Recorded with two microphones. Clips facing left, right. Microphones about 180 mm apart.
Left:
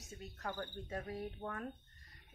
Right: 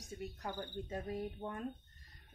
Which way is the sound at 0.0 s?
15° right (ahead or behind).